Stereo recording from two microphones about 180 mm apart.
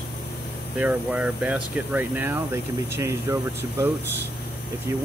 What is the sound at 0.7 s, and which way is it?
Speech, 10° right (ahead or behind).